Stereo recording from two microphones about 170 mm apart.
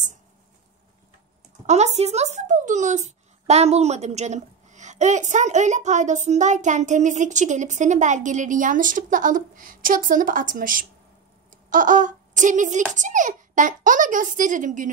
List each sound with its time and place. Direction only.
1.7 s speech: 40° right (ahead or behind)